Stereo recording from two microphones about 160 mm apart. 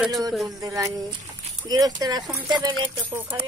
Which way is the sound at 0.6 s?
20° right (ahead or behind).